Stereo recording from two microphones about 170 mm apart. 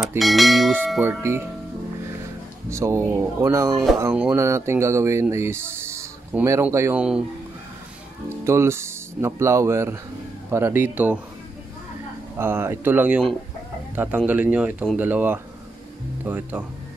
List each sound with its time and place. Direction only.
0.2 s speech: centre (ahead or behind)
1.2 s speech: 15° right (ahead or behind)
2.7 s speech: 15° right (ahead or behind)
8.5 s speech: 15° right (ahead or behind)
12.4 s speech: 15° right (ahead or behind)